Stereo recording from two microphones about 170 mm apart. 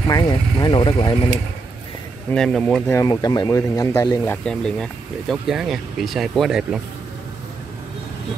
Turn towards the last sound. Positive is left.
turn(degrees=0)  # may be behind; listen again after turning